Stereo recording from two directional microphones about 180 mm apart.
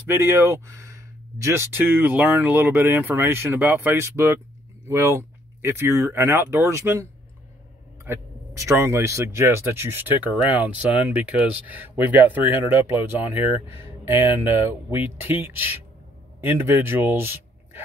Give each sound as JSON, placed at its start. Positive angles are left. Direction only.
{"t": 0.1, "sound": "speech", "side_deg": -15}
{"t": 14.6, "sound": "speech", "side_deg": -15}